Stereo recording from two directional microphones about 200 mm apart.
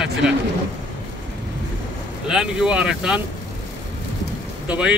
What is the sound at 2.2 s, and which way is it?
Speech, 5° right (ahead or behind).